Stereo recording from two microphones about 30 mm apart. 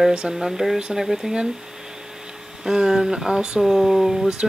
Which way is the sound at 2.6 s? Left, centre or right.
Right.